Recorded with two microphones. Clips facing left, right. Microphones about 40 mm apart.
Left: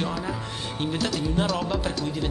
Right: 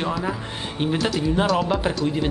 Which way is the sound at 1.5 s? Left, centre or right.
Right.